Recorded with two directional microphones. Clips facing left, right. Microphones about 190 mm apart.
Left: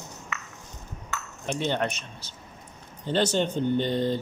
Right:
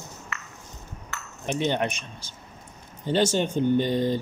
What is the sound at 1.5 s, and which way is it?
Speech, 15° right (ahead or behind).